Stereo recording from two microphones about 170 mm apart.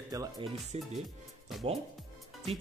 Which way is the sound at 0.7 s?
40° right (ahead or behind).